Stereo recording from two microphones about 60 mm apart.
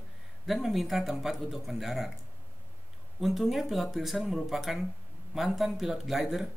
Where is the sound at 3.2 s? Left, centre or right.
Centre.